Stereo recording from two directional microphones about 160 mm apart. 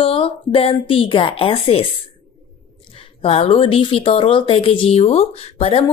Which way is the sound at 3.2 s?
40° left (ahead or behind).